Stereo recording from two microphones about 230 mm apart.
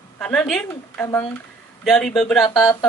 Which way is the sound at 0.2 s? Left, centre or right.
Centre.